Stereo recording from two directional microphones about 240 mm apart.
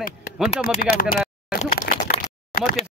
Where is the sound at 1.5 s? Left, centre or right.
Left.